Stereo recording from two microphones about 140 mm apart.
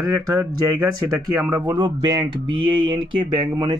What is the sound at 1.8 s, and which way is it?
Speech, 30° right (ahead or behind).